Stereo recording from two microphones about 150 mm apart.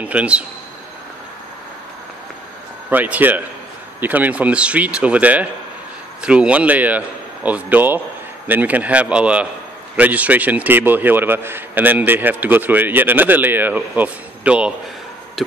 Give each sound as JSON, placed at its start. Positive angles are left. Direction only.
{"t": 0.0, "sound": "a man's voice", "side_deg": -10}
{"t": 2.9, "sound": "a man's voice", "side_deg": -10}
{"t": 15.4, "sound": "tick-tock", "side_deg": 0}